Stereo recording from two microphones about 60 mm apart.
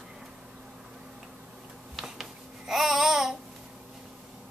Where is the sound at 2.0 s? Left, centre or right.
Centre.